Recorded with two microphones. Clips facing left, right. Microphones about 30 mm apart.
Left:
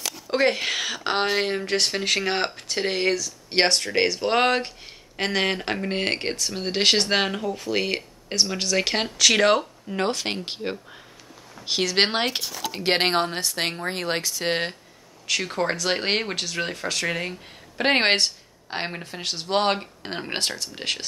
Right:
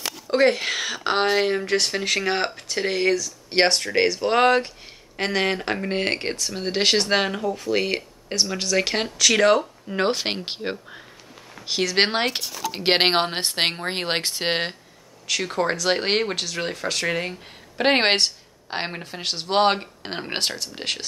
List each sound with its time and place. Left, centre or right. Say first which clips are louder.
0.3 s speech: right 3 dB; centre
10.0 s speech: right 3 dB; right
11.6 s speech: right 1 dB; centre
12.7 s speech: right 2 dB; right
14.5 s speech: even; centre
15.2 s speech: right 1 dB; centre